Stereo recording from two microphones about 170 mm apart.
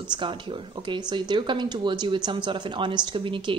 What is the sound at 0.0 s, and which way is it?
A woman's voice, 25° right (ahead or behind).